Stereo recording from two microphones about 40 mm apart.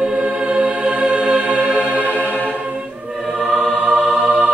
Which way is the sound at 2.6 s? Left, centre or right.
Right.